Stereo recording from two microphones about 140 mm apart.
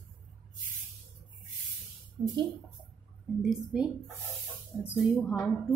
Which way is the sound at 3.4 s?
Centre (ahead or behind).